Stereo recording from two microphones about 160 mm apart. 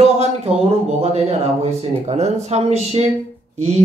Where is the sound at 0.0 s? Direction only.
40° right (ahead or behind).